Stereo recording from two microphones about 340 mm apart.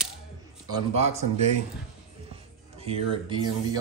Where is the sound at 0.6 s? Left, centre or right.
Centre.